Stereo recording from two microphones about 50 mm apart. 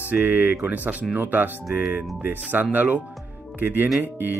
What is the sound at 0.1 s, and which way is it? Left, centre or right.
Speech, right.